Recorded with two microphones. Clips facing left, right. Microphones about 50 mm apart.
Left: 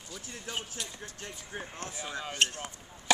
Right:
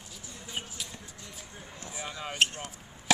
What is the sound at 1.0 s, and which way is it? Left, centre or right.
Speech, left.